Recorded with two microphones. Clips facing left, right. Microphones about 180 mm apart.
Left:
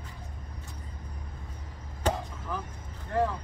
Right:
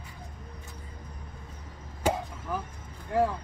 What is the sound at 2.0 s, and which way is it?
Chop, 10° right (ahead or behind).